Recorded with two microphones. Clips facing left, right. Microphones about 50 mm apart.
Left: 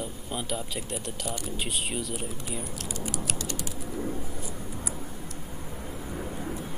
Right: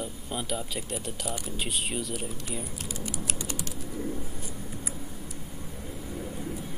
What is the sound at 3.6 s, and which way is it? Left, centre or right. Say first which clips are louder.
Bird: left 1 dB; centre.